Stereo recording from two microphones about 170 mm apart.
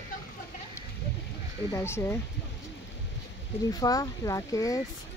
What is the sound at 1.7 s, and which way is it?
Speech, 15° left (ahead or behind).